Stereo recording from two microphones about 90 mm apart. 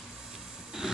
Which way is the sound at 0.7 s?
5° right (ahead or behind).